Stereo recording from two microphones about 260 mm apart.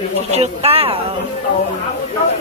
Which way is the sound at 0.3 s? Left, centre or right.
Right.